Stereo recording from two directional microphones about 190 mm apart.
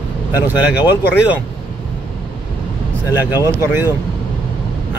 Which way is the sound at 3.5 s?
10° right (ahead or behind).